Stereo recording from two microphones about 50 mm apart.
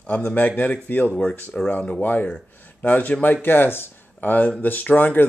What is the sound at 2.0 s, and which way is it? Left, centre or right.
Speech, left.